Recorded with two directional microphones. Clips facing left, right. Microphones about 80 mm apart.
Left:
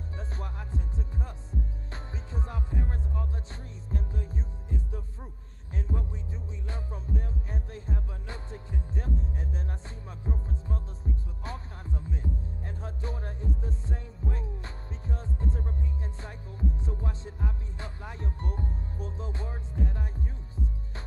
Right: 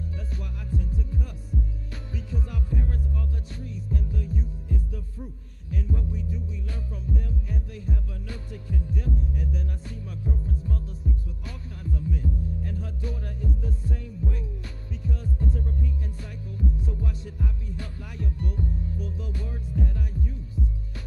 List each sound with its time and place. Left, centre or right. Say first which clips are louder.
0.3 s music: right 4 dB; left